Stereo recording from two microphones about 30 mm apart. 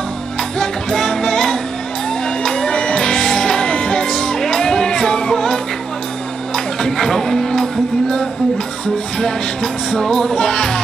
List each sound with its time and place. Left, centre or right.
0.4 s music: centre